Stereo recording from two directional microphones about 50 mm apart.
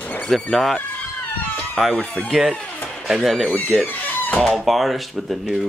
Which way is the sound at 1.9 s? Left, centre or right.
Left.